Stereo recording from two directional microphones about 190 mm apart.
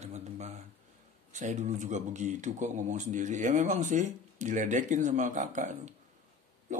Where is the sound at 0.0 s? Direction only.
35° right (ahead or behind).